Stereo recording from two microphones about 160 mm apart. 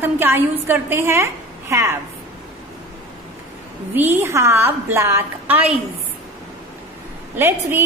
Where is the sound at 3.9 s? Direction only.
15° right (ahead or behind).